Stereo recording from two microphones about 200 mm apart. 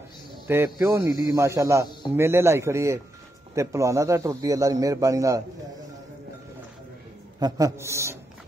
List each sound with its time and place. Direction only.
0.7 s a man's voice: 15° right (ahead or behind)
7.3 s a man's voice: 20° right (ahead or behind)